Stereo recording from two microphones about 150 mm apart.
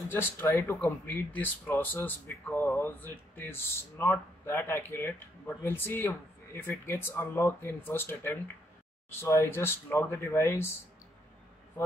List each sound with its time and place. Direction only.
0.1 s speech: 15° left (ahead or behind)